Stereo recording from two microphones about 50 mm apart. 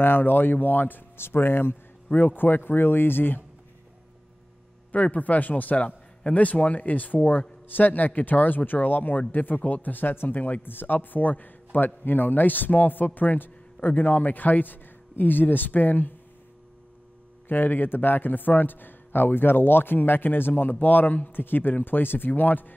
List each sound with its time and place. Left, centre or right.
0.0 s speech: left
1.1 s speech: left
2.0 s speech: left
4.9 s speech: left
17.5 s speech: left